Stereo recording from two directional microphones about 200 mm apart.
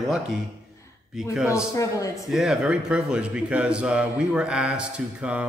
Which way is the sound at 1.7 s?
15° left (ahead or behind).